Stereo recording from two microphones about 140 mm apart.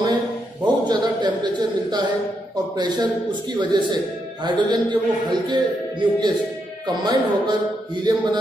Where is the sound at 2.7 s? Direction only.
30° right (ahead or behind).